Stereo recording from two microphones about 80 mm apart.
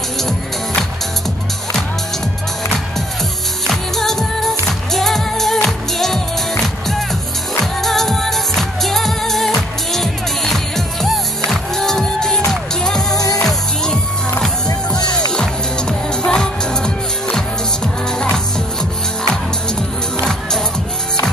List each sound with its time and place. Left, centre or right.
3.6 s music: centre
7.8 s music: centre
13.1 s music: left
13.4 s music: centre
16.3 s music: centre
20.2 s music: centre